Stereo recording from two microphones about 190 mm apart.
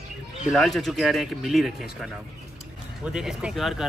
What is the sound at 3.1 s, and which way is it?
Speech, 5° right (ahead or behind).